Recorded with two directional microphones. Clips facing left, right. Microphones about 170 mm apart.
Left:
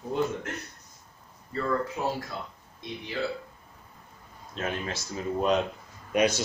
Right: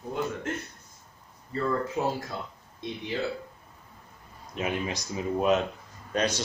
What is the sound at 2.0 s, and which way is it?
Speech, 25° right (ahead or behind).